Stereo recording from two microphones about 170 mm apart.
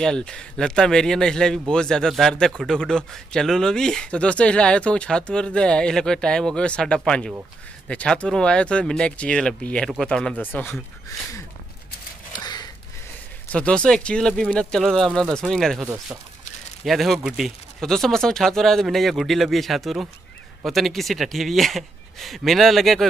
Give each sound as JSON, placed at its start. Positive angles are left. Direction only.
{"t": 0.0, "sound": "a man's voice", "side_deg": 5}
{"t": 12.3, "sound": "gasp", "side_deg": 25}
{"t": 13.5, "sound": "a man's voice", "side_deg": 5}